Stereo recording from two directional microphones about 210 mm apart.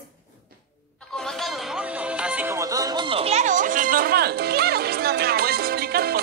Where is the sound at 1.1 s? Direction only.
Centre (ahead or behind).